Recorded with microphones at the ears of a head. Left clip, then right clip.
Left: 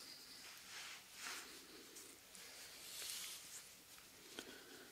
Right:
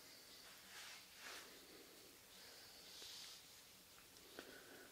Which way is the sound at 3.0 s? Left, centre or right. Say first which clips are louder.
Left 6 dB; left.